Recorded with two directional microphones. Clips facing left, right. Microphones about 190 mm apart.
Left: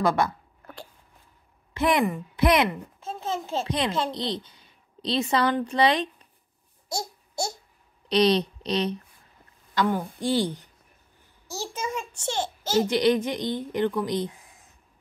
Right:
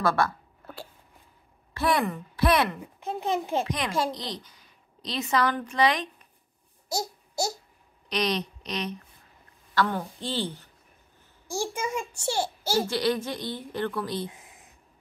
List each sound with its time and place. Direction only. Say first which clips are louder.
0.0 s a woman's voice: left 2 dB; 20° left (ahead or behind)
1.7 s a woman's voice: left 3 dB; 20° left (ahead or behind)
2.8 s a child's voice: right 3 dB; 15° right (ahead or behind)
3.6 s a child's voice: left 2 dB; 30° left (ahead or behind)
8.1 s speech: left 7 dB; 30° left (ahead or behind)
9.8 s a woman's voice: left 2 dB; 10° left (ahead or behind)
11.4 s a child's voice: right 2 dB; 15° right (ahead or behind)
12.8 s a woman's voice: left 5 dB; 20° left (ahead or behind)